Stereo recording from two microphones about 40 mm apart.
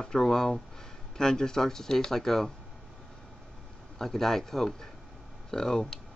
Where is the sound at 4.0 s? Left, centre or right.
Centre.